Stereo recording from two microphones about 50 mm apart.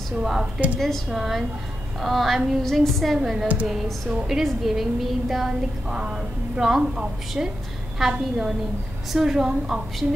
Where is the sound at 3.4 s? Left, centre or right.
Right.